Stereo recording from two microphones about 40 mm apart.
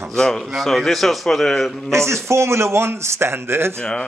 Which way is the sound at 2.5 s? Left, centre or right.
Right.